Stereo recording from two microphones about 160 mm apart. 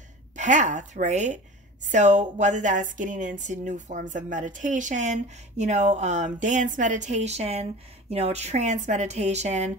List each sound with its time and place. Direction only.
0.4 s a woman's voice: 50° right (ahead or behind)